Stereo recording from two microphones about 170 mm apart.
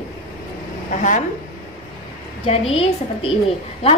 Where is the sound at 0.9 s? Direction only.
45° left (ahead or behind).